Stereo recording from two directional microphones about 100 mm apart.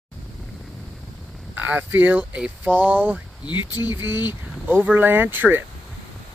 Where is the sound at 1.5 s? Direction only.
20° right (ahead or behind).